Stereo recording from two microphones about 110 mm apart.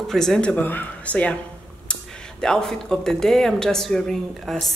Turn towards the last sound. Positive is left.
turn(degrees=5)  # may be behind; listen again after turning